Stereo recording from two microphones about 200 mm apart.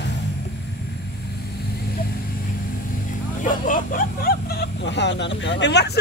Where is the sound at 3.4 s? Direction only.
40° left (ahead or behind).